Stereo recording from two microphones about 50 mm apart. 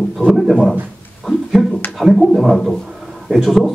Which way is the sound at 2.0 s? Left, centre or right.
Centre.